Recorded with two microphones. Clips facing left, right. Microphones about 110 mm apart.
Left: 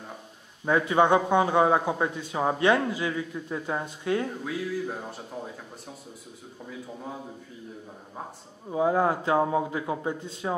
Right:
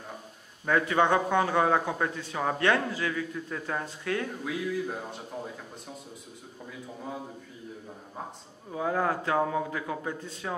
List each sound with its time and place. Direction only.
0.7 s a man's voice: 15° left (ahead or behind)
4.5 s a sound: centre (ahead or behind)
8.6 s a man's voice: 20° left (ahead or behind)